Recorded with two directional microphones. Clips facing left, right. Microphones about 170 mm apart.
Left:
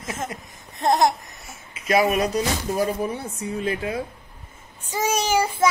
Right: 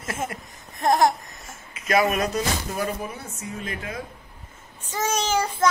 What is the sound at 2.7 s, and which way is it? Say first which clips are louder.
A woman's voice: left 5 dB; 35° left (ahead or behind).